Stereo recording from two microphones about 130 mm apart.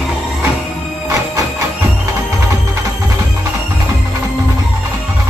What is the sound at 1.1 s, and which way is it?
Music, 25° right (ahead or behind).